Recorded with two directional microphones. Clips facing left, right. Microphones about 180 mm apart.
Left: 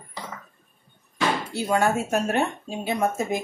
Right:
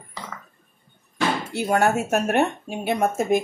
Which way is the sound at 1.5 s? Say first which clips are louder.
Right 3 dB; 65° right (ahead or behind).